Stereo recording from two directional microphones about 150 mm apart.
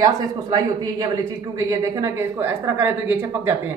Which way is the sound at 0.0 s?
25° right (ahead or behind).